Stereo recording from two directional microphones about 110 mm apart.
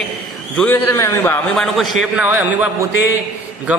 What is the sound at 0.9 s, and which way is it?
Speech, 20° left (ahead or behind).